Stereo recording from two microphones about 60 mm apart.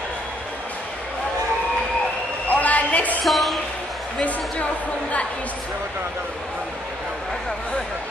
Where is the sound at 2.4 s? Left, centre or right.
Left.